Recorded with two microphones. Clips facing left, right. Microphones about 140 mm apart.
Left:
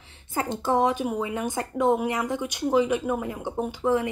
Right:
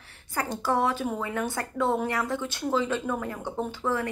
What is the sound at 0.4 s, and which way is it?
Speech, 20° left (ahead or behind).